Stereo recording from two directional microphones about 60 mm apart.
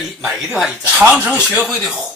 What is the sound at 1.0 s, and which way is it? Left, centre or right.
Speech, right.